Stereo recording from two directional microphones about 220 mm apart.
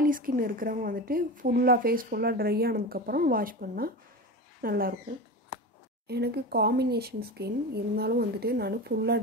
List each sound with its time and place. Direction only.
0.0 s a woman's voice: 40° right (ahead or behind)
6.0 s speech: 45° right (ahead or behind)